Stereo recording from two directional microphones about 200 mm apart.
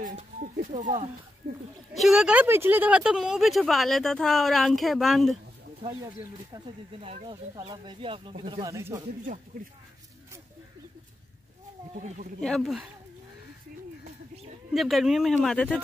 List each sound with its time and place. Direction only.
0.0 s speech: 40° right (ahead or behind)
1.4 s speech: 55° right (ahead or behind)
2.0 s speech: centre (ahead or behind)
6.5 s speech: 30° right (ahead or behind)
12.4 s speech: centre (ahead or behind)
14.7 s speech: centre (ahead or behind)